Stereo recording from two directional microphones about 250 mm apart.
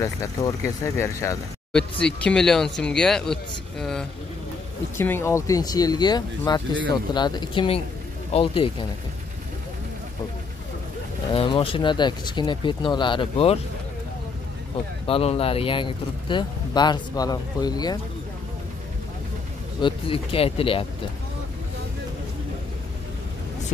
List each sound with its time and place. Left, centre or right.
0.0 s speech: centre
11.3 s speech: left
15.0 s speech: left
19.8 s speech: left